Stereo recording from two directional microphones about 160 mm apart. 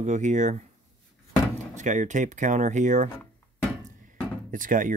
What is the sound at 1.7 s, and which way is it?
Speech, 50° right (ahead or behind).